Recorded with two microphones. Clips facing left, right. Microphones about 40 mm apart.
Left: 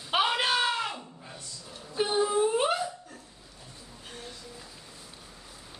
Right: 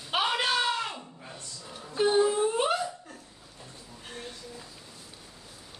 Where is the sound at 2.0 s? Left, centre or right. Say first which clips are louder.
Right 4 dB; centre.